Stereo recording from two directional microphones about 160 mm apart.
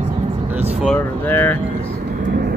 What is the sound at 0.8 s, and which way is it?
Vehicle, 10° left (ahead or behind).